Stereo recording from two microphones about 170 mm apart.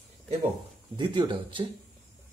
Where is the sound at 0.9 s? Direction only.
25° right (ahead or behind).